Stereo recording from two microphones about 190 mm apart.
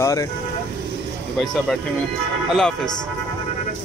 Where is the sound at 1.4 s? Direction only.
Centre (ahead or behind).